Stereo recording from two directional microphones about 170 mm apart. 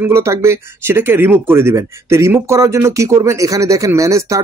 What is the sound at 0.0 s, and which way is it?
Speech, 15° right (ahead or behind).